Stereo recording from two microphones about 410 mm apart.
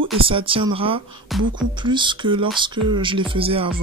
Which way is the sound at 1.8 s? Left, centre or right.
Centre.